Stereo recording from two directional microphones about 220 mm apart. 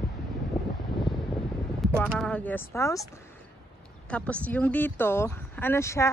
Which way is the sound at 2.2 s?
5° left (ahead or behind).